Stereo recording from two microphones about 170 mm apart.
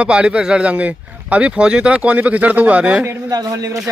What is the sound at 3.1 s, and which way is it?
Speech, 20° right (ahead or behind).